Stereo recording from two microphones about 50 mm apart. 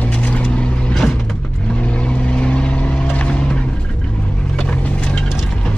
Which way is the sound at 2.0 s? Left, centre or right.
Left.